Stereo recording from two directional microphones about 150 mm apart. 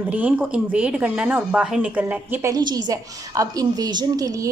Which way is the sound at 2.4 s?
25° right (ahead or behind).